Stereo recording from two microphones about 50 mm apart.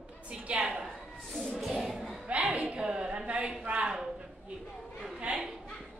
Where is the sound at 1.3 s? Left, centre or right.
Centre.